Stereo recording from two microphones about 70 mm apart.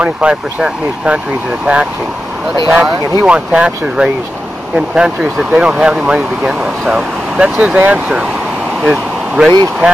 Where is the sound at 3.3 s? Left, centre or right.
Centre.